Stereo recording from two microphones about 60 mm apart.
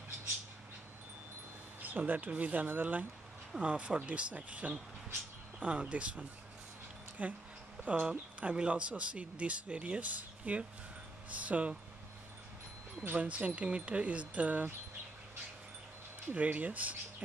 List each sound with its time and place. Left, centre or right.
1.8 s speech: right
13.2 s speech: right
16.3 s speech: right